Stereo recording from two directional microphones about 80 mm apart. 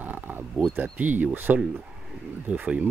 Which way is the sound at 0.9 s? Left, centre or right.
Centre.